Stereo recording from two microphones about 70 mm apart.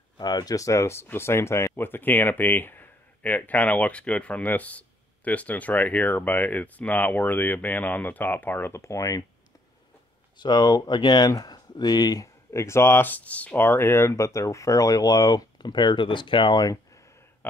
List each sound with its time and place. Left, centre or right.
0.2 s speech: left
8.7 s speech: left
10.4 s speech: left
12.5 s speech: left
13.0 s speech: left
13.6 s speech: left